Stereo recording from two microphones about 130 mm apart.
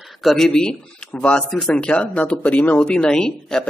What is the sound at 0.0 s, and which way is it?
Speech, centre (ahead or behind).